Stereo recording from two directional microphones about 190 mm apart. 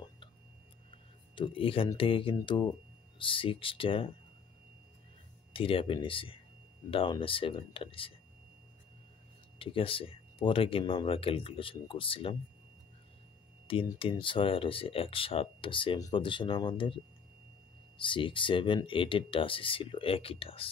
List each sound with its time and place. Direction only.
1.3 s speech: 25° left (ahead or behind)
5.5 s speech: 30° left (ahead or behind)
9.6 s speech: 30° left (ahead or behind)
13.7 s speech: 30° left (ahead or behind)